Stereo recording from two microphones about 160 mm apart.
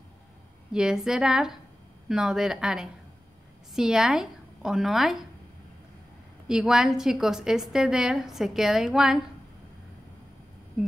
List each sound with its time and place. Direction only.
0.7 s a woman's voice: 5° right (ahead or behind)
6.4 s a woman's voice: 5° right (ahead or behind)